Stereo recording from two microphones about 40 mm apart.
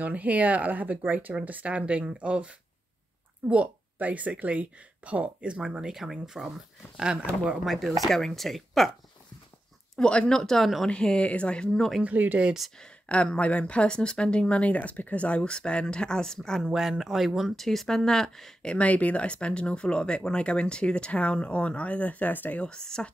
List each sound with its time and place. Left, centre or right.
0.0 s a woman's voice: right
5.8 s speech: centre
7.6 s speech: centre
9.9 s speech: left
10.3 s speech: centre
10.9 s speech: left
12.0 s speech: right
13.1 s speech: left; by 16.6 s centre
16.6 s speech: centre
17.6 s speech: centre
18.6 s speech: left
18.9 s speech: left
22.8 s speech: centre